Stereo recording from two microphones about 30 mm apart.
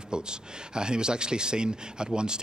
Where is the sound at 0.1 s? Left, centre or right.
Right.